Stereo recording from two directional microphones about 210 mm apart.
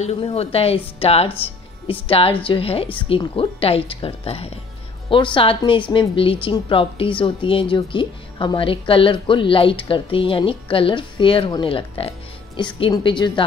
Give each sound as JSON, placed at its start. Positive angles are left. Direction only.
{"t": 0.0, "sound": "a woman's voice", "side_deg": 30}